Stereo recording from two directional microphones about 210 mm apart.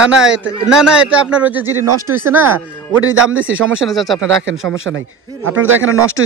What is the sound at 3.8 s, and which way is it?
Speech, centre (ahead or behind).